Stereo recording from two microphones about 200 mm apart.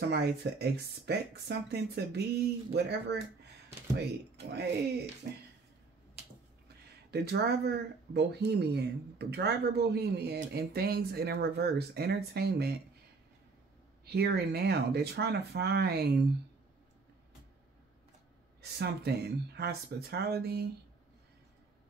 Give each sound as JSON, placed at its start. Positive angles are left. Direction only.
{"t": 0.1, "sound": "speech", "side_deg": -55}
{"t": 4.5, "sound": "speech", "side_deg": -55}
{"t": 7.1, "sound": "speech", "side_deg": -55}
{"t": 14.0, "sound": "speech", "side_deg": -50}
{"t": 18.6, "sound": "speech", "side_deg": -55}